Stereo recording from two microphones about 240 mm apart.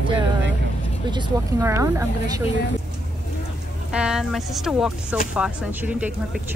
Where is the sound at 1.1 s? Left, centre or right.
Centre.